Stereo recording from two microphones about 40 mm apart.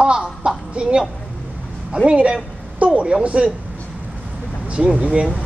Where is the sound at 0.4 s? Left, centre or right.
Right.